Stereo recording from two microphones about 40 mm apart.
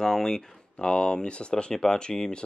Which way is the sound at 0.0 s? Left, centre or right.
Centre.